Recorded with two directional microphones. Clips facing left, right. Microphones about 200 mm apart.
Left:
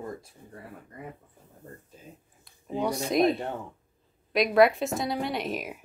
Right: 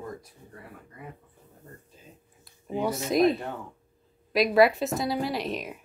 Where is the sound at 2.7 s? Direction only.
Centre (ahead or behind).